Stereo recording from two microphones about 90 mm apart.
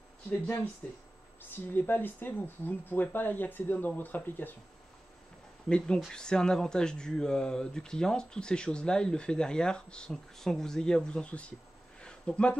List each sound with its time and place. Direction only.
0.8 s speech: 15° left (ahead or behind)
5.7 s speech: 10° left (ahead or behind)
12.0 s a sound: 10° left (ahead or behind)